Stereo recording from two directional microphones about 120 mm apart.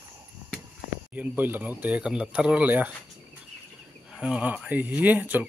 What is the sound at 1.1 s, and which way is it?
Speech, 15° right (ahead or behind).